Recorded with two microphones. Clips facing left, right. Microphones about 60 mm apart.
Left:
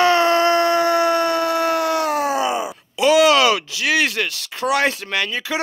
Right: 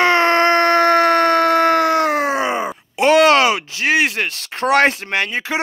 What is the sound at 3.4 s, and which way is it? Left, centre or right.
Speech, right.